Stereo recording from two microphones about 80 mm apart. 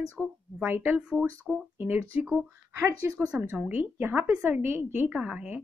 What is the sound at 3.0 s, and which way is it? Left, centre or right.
Speech, right.